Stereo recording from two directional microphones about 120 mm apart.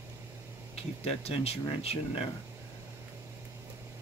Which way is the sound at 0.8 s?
55° left (ahead or behind).